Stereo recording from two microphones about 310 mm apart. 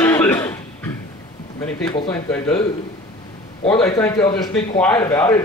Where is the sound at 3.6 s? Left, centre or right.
Centre.